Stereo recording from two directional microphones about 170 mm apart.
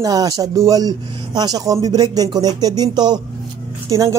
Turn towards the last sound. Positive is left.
turn(degrees=-20)  # may be behind; listen again after turning